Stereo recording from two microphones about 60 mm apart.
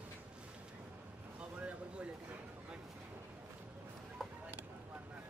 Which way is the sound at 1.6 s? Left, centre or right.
Centre.